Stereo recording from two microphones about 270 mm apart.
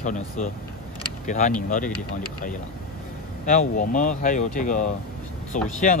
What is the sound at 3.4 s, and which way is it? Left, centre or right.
Speech, left.